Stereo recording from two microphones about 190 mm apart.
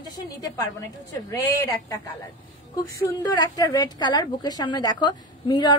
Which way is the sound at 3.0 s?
20° left (ahead or behind).